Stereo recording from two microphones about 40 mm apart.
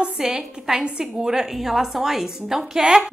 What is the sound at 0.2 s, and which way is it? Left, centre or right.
A woman's voice, centre.